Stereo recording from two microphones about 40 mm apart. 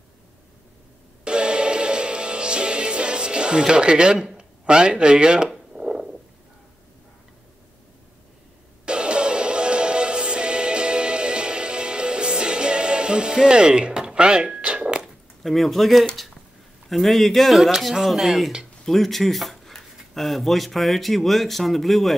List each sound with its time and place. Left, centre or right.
1.2 s music: right
4.4 s speech: right
5.8 s a sound: centre
8.8 s music: right
15.4 s speech: centre